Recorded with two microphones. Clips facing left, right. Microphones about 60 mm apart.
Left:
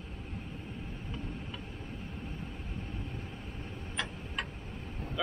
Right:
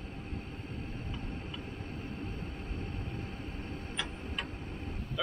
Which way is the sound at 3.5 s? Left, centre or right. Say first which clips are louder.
Right 2 dB; right.